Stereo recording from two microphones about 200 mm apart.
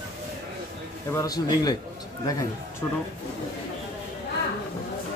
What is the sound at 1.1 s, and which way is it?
Speech, 20° left (ahead or behind).